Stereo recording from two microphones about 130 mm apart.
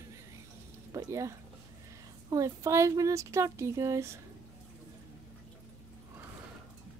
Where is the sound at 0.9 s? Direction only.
25° right (ahead or behind).